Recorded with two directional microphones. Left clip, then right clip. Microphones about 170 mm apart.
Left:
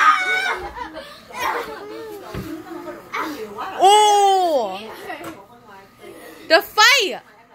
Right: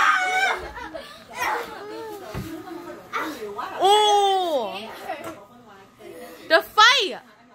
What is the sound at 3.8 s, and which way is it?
Babbling, 10° left (ahead or behind).